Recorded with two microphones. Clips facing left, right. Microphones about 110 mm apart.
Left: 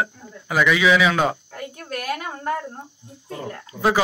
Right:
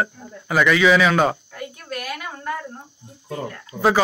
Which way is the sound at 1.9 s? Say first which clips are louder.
Left 3 dB; 35° left (ahead or behind).